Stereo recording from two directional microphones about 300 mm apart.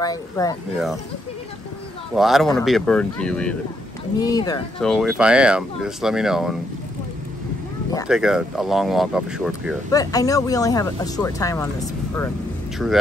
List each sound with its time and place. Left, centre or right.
0.0 s speech: centre
2.1 s speech: centre
4.7 s speech: centre
8.1 s speech: centre
9.8 s speech: centre